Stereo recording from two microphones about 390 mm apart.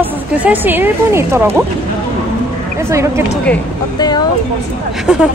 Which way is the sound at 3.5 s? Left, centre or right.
Centre.